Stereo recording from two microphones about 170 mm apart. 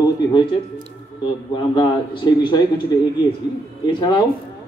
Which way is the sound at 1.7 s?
25° left (ahead or behind).